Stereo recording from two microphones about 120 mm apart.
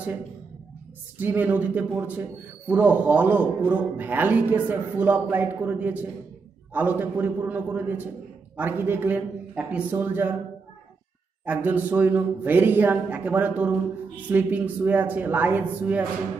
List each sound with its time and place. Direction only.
1.1 s a man's voice: 15° right (ahead or behind)
11.4 s a man's voice: 15° right (ahead or behind)